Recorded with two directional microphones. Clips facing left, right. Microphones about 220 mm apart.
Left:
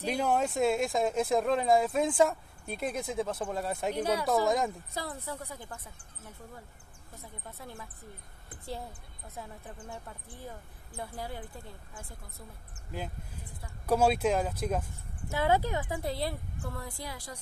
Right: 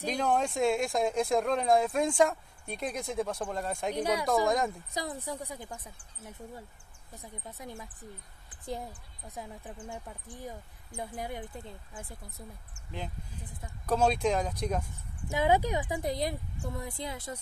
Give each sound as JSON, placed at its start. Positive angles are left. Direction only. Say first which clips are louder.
{"t": 0.0, "sound": "speech", "louder": "even", "side_deg": 5}
{"t": 3.9, "sound": "speech", "louder": "right 1 dB", "side_deg": -15}
{"t": 4.5, "sound": "speech", "louder": "even", "side_deg": 0}
{"t": 4.9, "sound": "speech", "louder": "right 2 dB", "side_deg": -15}
{"t": 7.2, "sound": "speech", "louder": "right 2 dB", "side_deg": -15}
{"t": 9.3, "sound": "speech", "louder": "right 2 dB", "side_deg": -15}
{"t": 13.8, "sound": "speech", "louder": "left 1 dB", "side_deg": 10}
{"t": 15.2, "sound": "speech", "louder": "right 1 dB", "side_deg": -15}